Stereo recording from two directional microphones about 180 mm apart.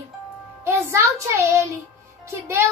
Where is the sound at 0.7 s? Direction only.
15° right (ahead or behind).